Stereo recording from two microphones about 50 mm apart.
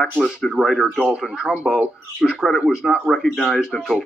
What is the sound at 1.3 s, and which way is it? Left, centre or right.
Speech, centre.